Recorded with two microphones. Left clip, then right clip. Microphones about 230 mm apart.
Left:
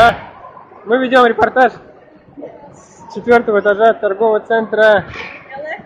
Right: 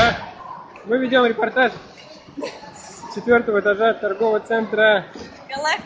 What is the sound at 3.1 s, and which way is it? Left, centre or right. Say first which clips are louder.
Speech: left 5 dB; centre.